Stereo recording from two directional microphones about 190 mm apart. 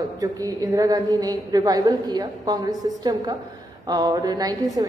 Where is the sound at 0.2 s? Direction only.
20° right (ahead or behind).